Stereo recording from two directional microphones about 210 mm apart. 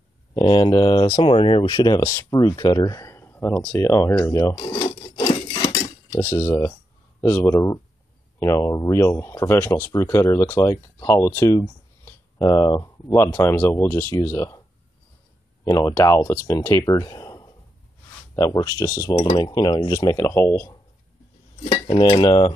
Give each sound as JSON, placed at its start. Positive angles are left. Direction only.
{"t": 0.3, "sound": "speech", "side_deg": 20}
{"t": 4.6, "sound": "rub", "side_deg": 20}
{"t": 6.1, "sound": "speech", "side_deg": 10}
{"t": 15.6, "sound": "speech", "side_deg": 15}
{"t": 21.7, "sound": "cutlery", "side_deg": 25}